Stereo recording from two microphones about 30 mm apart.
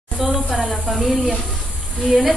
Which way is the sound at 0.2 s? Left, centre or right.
Centre.